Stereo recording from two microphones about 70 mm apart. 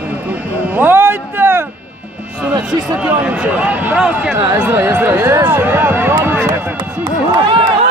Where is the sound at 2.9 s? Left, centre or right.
Centre.